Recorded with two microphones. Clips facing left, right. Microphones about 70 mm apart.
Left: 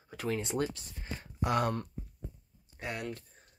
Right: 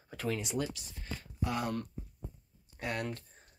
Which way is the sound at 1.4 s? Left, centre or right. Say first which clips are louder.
Left 5 dB; left.